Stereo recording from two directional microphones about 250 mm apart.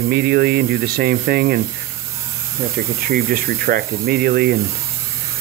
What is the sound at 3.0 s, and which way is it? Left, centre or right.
Speech, right.